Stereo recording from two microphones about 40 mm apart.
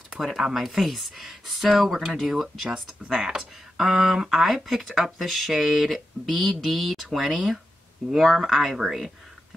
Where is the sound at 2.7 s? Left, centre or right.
Centre.